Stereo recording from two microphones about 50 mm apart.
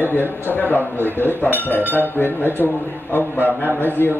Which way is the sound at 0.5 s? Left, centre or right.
Left.